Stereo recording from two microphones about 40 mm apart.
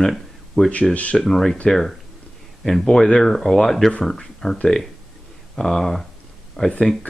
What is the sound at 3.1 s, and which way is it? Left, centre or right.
Speech, centre.